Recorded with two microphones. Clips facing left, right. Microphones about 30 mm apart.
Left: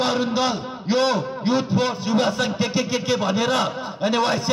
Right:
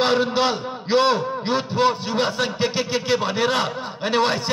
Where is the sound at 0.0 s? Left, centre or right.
Right.